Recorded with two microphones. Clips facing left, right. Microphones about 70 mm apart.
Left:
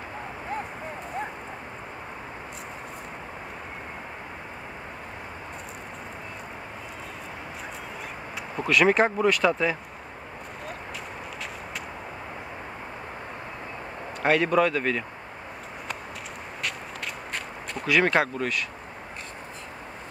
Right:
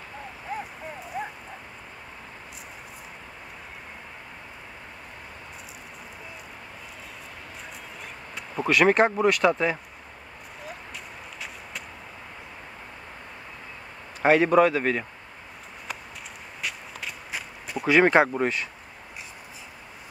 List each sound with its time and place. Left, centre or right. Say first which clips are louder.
8.5 s speech: right 1 dB; centre
14.2 s speech: right 3 dB; centre
16.6 s walk: left 1 dB; centre
17.8 s speech: right 4 dB; right